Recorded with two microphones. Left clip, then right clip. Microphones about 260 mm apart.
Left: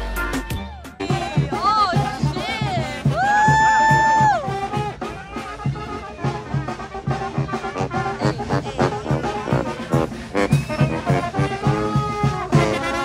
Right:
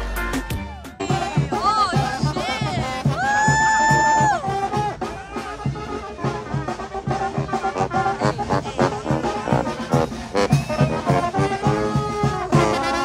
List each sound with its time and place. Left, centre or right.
1.0 s music: right
1.6 s music: centre
7.1 s music: right